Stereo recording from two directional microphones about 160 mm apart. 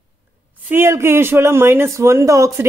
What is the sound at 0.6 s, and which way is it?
Speech, 15° right (ahead or behind).